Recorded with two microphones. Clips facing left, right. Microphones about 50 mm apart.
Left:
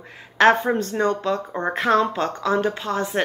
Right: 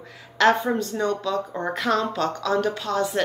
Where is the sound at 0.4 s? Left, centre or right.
Left.